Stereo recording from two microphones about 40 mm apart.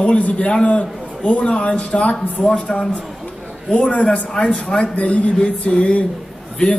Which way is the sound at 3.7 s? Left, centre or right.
Left.